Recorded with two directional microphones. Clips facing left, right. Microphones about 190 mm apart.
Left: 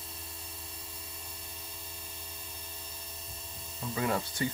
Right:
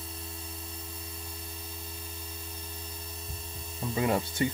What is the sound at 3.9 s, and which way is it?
Speech, 20° right (ahead or behind).